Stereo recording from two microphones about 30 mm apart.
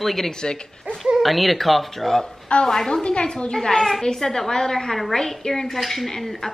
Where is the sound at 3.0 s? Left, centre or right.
Left; by 4.0 s centre.